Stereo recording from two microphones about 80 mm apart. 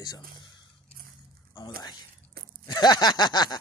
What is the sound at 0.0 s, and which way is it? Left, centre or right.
Speech, left.